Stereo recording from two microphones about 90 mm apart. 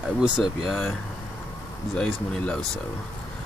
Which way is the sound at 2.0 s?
10° left (ahead or behind).